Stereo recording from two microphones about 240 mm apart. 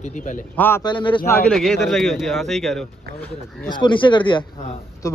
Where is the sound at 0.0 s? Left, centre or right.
Left.